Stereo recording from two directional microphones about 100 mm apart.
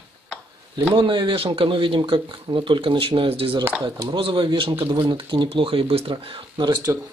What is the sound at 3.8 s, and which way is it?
Speech, 50° right (ahead or behind).